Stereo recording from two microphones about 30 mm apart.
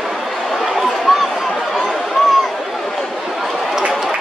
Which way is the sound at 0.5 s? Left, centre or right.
Centre.